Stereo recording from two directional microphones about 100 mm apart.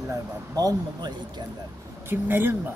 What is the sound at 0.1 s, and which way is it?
Speech, 35° right (ahead or behind).